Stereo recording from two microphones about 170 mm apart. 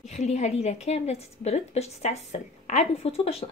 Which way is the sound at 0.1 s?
40° left (ahead or behind).